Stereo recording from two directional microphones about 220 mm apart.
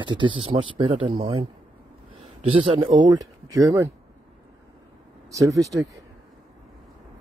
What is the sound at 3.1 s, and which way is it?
Speech, 15° right (ahead or behind).